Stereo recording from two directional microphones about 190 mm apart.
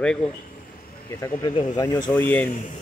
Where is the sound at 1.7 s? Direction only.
20° left (ahead or behind).